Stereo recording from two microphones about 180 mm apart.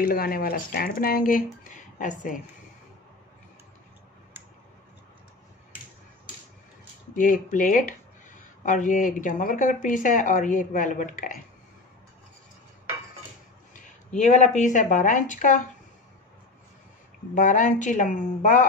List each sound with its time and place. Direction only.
0.0 s speech: 55° left (ahead or behind)
7.2 s speech: 45° left (ahead or behind)
13.7 s speech: 45° left (ahead or behind)
17.3 s speech: 45° left (ahead or behind)